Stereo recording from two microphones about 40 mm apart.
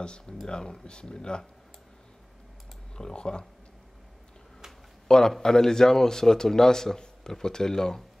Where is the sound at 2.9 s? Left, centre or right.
Left.